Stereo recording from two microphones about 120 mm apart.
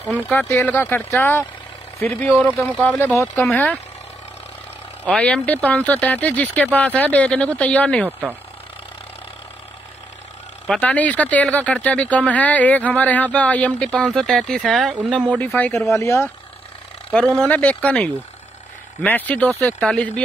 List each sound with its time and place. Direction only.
0.4 s speech: 20° left (ahead or behind)
5.0 s speech: 10° left (ahead or behind)
10.8 s speech: 10° left (ahead or behind)
17.1 s speech: 5° left (ahead or behind)